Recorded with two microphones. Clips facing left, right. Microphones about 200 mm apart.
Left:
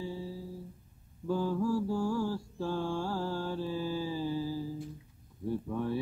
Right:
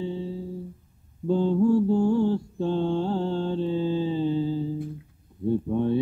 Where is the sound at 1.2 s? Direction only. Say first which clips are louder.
Right 9 dB; 25° right (ahead or behind).